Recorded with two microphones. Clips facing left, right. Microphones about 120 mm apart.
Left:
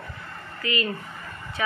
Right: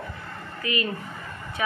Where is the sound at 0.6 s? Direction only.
20° right (ahead or behind).